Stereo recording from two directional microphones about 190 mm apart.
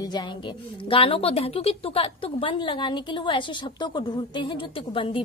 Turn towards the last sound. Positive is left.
turn(degrees=25)  # may be behind; listen again after turning